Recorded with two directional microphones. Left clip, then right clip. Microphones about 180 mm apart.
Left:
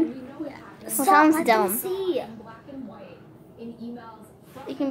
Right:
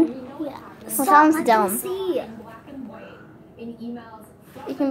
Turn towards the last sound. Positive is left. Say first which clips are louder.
# right 4 dB
turn(degrees=-15)  # may be behind; listen again after turning